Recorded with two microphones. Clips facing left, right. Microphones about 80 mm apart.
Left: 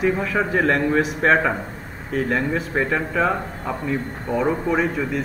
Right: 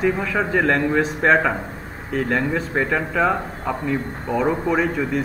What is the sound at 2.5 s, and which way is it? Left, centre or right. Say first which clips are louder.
Speech: right 1 dB; centre.